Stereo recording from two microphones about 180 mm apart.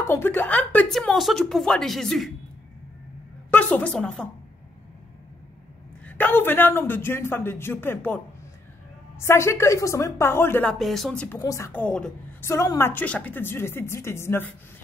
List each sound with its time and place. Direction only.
0.0 s speech: 15° left (ahead or behind)
3.4 s a woman's voice: 10° left (ahead or behind)
6.0 s a woman's voice: 10° left (ahead or behind)
9.2 s a woman's voice: 15° left (ahead or behind)